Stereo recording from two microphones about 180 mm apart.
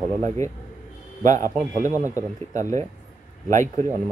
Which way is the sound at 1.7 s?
45° right (ahead or behind).